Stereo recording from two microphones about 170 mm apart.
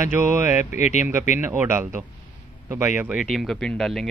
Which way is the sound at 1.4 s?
15° right (ahead or behind).